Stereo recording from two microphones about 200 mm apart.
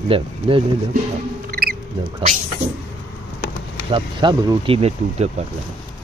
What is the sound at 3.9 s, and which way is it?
Speech, 25° right (ahead or behind).